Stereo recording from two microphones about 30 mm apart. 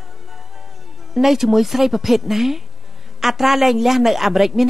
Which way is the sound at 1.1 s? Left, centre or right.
Centre.